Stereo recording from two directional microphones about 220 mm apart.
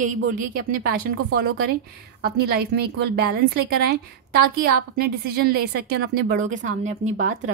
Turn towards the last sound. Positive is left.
turn(degrees=-35)  # may be behind; listen again after turning